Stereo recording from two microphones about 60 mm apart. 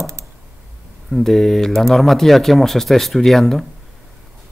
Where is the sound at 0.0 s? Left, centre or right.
Right.